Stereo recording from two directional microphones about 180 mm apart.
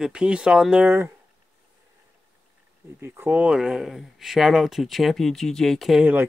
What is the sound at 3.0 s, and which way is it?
Speech, 10° right (ahead or behind).